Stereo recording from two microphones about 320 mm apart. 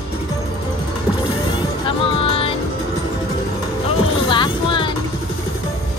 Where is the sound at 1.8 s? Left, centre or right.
Centre.